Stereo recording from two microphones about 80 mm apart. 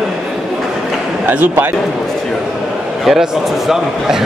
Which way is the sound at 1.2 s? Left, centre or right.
Right.